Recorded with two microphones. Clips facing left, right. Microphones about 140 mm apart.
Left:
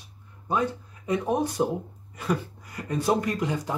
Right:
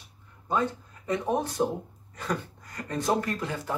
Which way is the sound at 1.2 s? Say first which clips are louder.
Left 1 dB; 10° left (ahead or behind).